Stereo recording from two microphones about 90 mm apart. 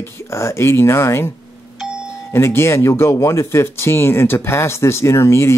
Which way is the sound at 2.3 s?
25° left (ahead or behind).